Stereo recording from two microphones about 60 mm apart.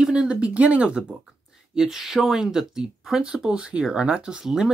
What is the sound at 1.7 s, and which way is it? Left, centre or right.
Speech, centre.